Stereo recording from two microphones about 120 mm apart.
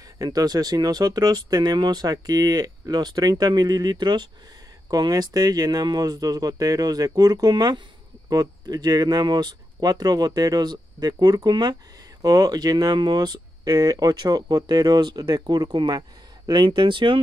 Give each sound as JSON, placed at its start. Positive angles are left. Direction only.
{"t": 0.2, "sound": "speech", "side_deg": -30}